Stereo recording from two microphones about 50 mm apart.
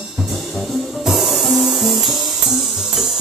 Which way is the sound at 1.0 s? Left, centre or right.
Centre.